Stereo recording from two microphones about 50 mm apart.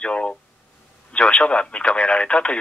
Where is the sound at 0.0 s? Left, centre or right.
Left.